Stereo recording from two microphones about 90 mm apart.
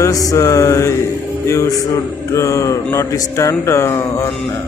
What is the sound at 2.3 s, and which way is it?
A man's voice, 35° left (ahead or behind).